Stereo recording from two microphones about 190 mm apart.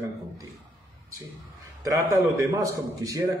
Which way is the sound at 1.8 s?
15° right (ahead or behind).